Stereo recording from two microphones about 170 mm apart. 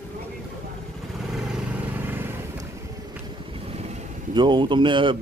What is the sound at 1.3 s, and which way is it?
Vehicle, 5° right (ahead or behind).